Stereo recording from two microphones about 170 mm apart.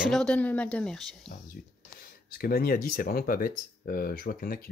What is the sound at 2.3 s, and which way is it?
Speech, 60° left (ahead or behind).